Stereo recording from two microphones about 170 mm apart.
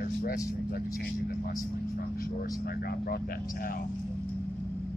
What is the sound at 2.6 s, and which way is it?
Speech, 65° left (ahead or behind).